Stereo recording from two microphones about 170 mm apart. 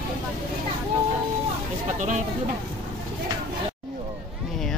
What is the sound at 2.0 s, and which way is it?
Speech, 45° right (ahead or behind).